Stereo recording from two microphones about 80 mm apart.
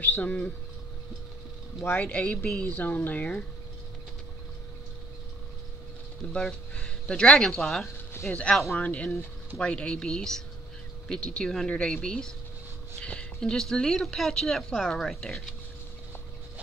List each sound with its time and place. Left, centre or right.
0.0 s speech: left
1.9 s speech: centre
6.3 s speech: centre
8.3 s speech: centre